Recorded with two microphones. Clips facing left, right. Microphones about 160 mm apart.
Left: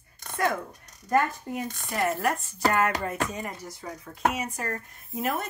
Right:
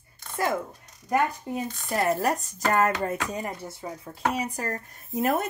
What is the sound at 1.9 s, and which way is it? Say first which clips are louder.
Speech: right 2 dB; 40° right (ahead or behind).